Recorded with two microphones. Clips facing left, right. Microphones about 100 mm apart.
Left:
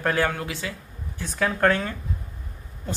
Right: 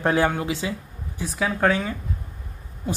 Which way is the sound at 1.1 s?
5° right (ahead or behind).